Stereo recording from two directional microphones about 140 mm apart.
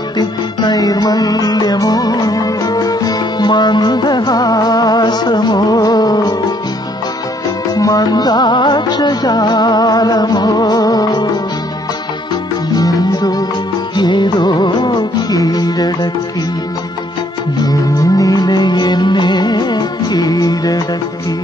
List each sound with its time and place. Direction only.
0.2 s music: 30° left (ahead or behind)
7.7 s music: 25° left (ahead or behind)
12.7 s music: 30° left (ahead or behind)
17.6 s music: 25° left (ahead or behind)